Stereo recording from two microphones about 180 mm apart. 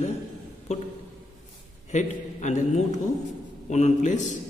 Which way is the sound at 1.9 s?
40° left (ahead or behind).